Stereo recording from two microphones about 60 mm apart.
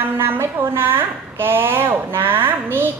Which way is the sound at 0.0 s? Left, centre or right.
Right.